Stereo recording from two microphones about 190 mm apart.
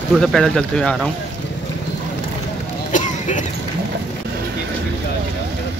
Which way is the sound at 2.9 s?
40° left (ahead or behind).